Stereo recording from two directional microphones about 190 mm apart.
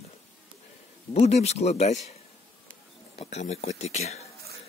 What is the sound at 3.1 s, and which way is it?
Speech, 35° left (ahead or behind).